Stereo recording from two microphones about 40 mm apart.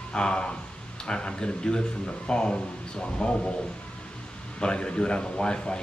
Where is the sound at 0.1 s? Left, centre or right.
Left.